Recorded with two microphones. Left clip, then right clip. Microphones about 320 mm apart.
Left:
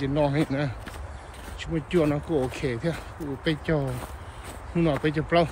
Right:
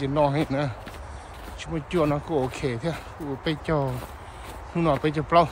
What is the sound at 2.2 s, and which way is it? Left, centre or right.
Speech, right.